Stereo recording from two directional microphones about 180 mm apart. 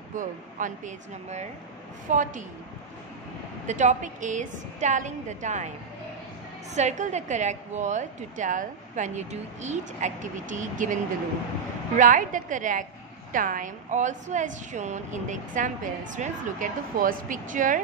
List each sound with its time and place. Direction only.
0.1 s a woman's voice: 45° right (ahead or behind)
3.6 s a woman's voice: 45° right (ahead or behind)
6.7 s a woman's voice: 40° right (ahead or behind)
12.0 s a woman's voice: 45° right (ahead or behind)